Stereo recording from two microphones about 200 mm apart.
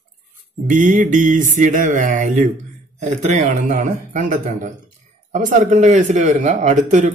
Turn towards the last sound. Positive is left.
turn(degrees=-35)  # may be behind; listen again after turning